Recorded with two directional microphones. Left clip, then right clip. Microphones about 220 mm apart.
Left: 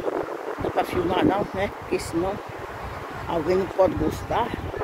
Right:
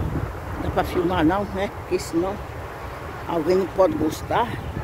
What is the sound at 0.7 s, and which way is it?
Speech, 15° right (ahead or behind).